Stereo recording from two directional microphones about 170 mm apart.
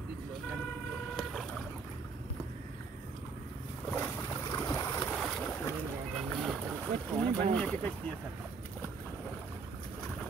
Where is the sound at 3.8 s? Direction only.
15° left (ahead or behind).